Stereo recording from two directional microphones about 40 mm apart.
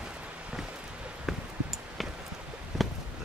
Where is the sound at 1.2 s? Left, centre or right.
Centre.